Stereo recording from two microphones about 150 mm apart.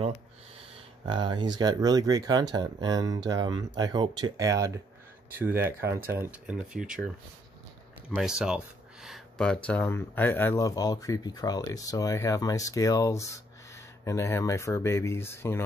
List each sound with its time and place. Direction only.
1.0 s speech: 30° right (ahead or behind); by 7.0 s 5° right (ahead or behind)
8.1 s speech: 5° right (ahead or behind); by 15.6 s 15° left (ahead or behind)